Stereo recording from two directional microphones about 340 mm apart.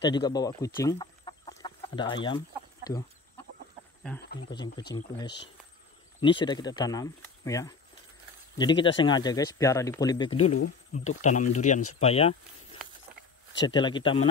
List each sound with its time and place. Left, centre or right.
0.0 s speech: centre
4.5 s speech: centre
10.4 s speech: left
11.1 s speech: left
13.6 s speech: centre